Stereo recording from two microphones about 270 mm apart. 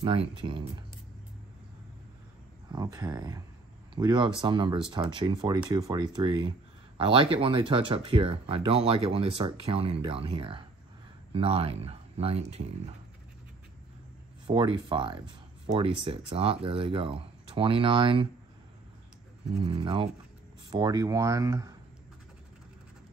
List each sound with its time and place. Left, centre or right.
0.0 s speech: right
2.7 s speech: centre
14.5 s speech: centre
19.6 s speech: centre